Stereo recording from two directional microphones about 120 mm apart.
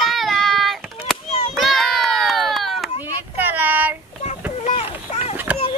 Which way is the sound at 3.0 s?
15° right (ahead or behind).